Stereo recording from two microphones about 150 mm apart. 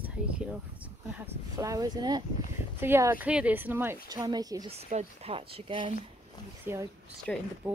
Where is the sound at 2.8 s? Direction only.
15° right (ahead or behind).